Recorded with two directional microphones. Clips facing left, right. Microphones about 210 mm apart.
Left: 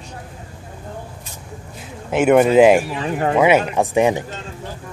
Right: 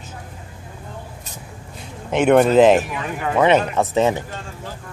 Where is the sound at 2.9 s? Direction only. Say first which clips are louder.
Left 5 dB; 30° left (ahead or behind).